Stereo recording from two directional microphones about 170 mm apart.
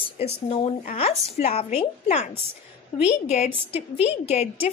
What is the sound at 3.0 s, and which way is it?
A woman's voice, 40° left (ahead or behind).